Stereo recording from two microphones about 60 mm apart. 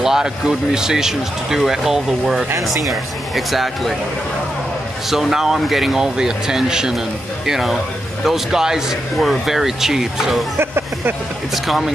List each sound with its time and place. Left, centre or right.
0.0 s speech: centre
5.1 s speech: centre
11.5 s speech: centre